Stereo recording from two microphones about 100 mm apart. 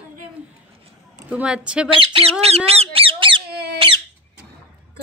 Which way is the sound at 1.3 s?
10° right (ahead or behind).